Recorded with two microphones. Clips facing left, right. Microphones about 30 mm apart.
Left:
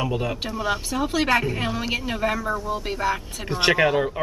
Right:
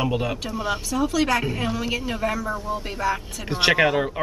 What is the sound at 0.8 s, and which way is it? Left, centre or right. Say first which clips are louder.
Speech: right 2 dB; left.